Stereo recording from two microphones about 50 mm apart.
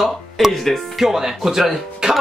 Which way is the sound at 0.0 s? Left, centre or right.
Centre.